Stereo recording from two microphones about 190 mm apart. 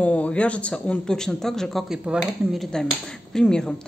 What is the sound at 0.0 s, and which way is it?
A woman's voice, 5° left (ahead or behind).